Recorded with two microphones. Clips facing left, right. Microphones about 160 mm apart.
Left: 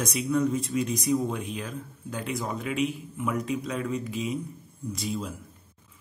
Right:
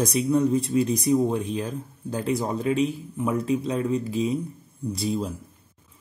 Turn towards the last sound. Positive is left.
turn(degrees=-35)  # may be behind; listen again after turning